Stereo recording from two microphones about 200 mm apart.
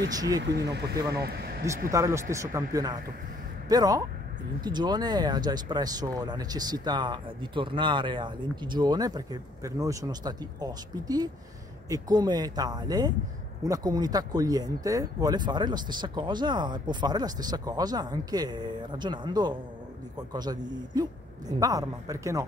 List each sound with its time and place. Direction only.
0.4 s speech: 55° right (ahead or behind)
1.9 s speech: 15° right (ahead or behind)